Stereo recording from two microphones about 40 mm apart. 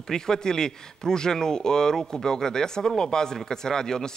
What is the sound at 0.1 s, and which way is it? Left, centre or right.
Speech, centre.